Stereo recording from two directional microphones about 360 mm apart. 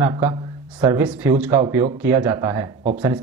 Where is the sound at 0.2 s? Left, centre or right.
Centre.